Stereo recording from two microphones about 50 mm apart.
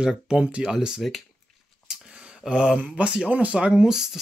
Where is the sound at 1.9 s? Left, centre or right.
Centre.